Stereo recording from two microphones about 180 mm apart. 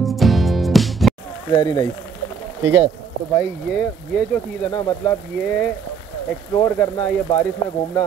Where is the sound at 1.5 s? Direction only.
20° left (ahead or behind).